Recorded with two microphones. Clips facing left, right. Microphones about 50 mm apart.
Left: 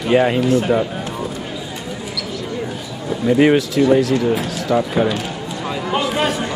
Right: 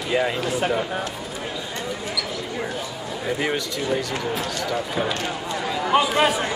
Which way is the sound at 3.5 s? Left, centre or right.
Centre.